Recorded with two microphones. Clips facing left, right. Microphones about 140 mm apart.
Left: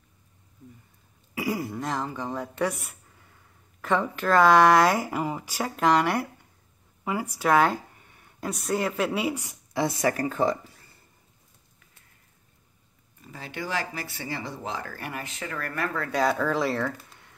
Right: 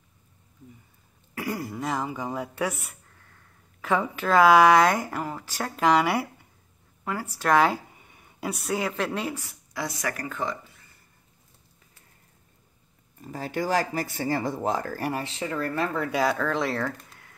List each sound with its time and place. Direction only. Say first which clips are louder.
1.3 s speech: left 2 dB; 5° left (ahead or behind)
5.8 s speech: right 1 dB; centre (ahead or behind)
7.1 s speech: left 1 dB; 10° left (ahead or behind)
9.8 s speech: left 6 dB; 30° left (ahead or behind)
13.2 s speech: right 6 dB; 40° right (ahead or behind); by 16.2 s 20° right (ahead or behind)
16.2 s speech: left 2 dB; centre (ahead or behind)